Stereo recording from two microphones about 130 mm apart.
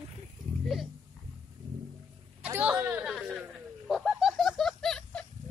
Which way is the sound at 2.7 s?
20° right (ahead or behind).